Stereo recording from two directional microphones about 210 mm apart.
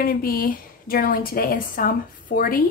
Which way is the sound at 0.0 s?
45° left (ahead or behind).